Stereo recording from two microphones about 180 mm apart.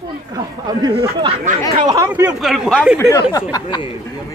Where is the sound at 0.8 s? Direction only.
20° right (ahead or behind).